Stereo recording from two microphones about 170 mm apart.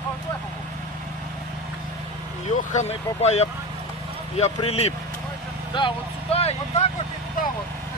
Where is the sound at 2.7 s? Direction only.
40° left (ahead or behind).